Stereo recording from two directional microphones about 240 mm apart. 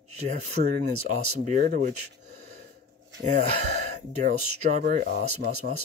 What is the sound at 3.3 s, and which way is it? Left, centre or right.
Speech, right.